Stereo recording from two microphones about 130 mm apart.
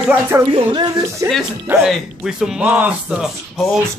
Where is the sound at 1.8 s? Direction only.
5° right (ahead or behind).